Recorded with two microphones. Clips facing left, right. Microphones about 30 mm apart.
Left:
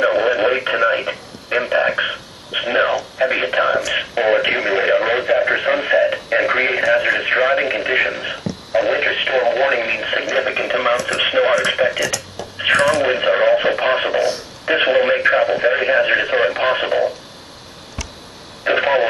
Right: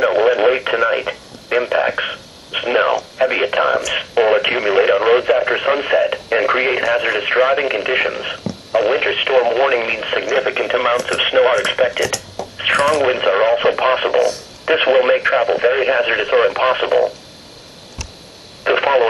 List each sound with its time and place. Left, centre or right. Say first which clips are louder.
0.0 s radio: right 2 dB; centre
0.7 s speech: even; centre
4.1 s radio: right 3 dB; centre
6.2 s speech: right 1 dB; centre
18.6 s radio: right 2 dB; centre